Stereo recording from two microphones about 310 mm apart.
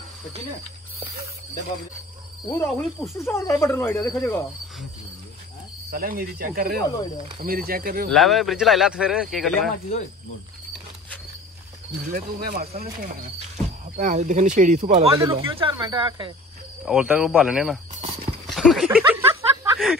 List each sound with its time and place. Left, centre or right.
2.4 s speech: centre
5.9 s speech: right
8.1 s speech: centre
12.1 s speech: right
16.8 s speech: centre
18.5 s a sound: centre